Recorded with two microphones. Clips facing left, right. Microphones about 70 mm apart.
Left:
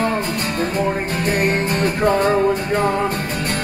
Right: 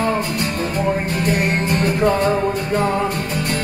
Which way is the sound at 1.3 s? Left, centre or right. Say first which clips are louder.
Left 1 dB; left.